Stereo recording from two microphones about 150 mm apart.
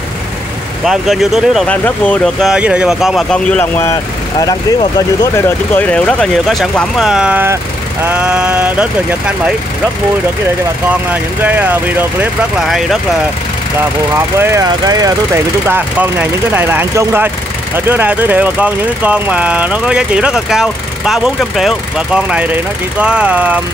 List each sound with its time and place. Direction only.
0.8 s speech: centre (ahead or behind)
1.7 s speech: 10° left (ahead or behind)
2.4 s speech: 5° right (ahead or behind)
3.8 s speech: 25° left (ahead or behind)
5.8 s speech: 10° left (ahead or behind); by 8.8 s 10° right (ahead or behind)
10.9 s speech: 10° right (ahead or behind)
14.4 s speech: 20° right (ahead or behind)
15.6 s speech: 10° right (ahead or behind)